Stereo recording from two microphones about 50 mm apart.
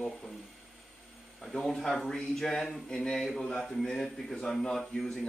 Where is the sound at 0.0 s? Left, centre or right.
Centre.